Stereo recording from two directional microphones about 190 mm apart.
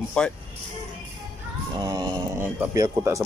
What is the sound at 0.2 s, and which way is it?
Speech, 5° left (ahead or behind).